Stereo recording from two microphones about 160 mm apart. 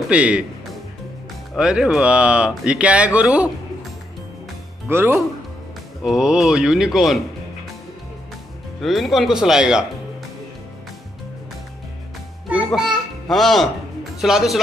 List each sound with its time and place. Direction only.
0.1 s speech: 5° right (ahead or behind)
1.5 s speech: 5° right (ahead or behind)
4.8 s speech: 15° right (ahead or behind)
6.0 s speech: 5° right (ahead or behind)
8.8 s speech: centre (ahead or behind)
12.4 s music: 5° right (ahead or behind)
14.2 s speech: centre (ahead or behind)